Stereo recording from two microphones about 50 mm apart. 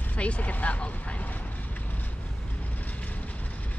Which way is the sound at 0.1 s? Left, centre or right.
Left.